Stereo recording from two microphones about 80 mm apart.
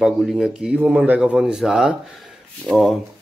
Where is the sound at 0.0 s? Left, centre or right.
Centre.